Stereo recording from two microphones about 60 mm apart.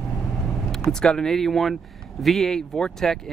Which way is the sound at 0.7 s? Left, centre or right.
Centre.